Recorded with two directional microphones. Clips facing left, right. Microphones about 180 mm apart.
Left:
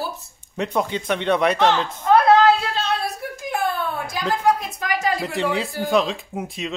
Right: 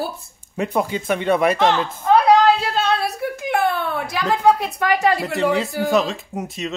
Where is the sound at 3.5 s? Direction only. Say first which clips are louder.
Right 3 dB; 65° right (ahead or behind).